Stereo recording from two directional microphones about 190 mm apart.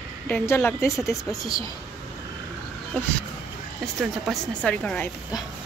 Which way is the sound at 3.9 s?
Centre (ahead or behind).